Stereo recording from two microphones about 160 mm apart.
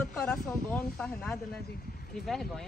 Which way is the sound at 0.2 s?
5° left (ahead or behind).